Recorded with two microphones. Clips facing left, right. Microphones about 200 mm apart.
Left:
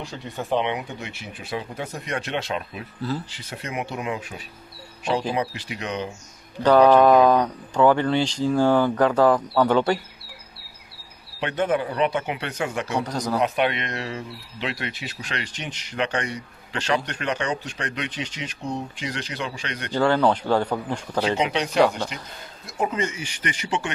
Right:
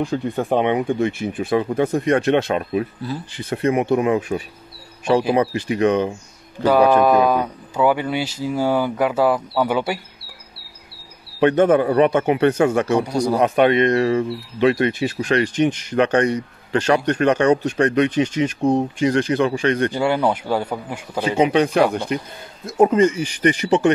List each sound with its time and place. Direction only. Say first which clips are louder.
0.0 s speech: right 11 dB; 55° right (ahead or behind)
3.0 s speech: even; 15° right (ahead or behind)
3.3 s speech: right 12 dB; 55° right (ahead or behind)
6.6 s speech: even; 10° right (ahead or behind)
11.3 s speech: right 9 dB; 50° right (ahead or behind)
13.0 s speech: right 6 dB; 10° right (ahead or behind)
13.4 s speech: right 9 dB; 50° right (ahead or behind)
19.9 s speech: right 1 dB; 10° right (ahead or behind)
21.4 s speech: right 7 dB; 50° right (ahead or behind)
22.9 s speech: right 12 dB; 35° right (ahead or behind)